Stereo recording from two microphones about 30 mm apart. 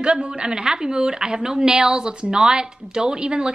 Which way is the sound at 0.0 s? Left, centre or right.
Right.